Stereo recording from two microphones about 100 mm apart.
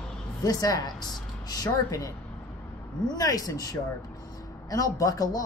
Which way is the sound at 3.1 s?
40° left (ahead or behind).